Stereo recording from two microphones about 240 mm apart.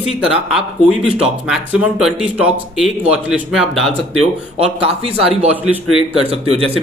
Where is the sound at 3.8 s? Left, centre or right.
Right.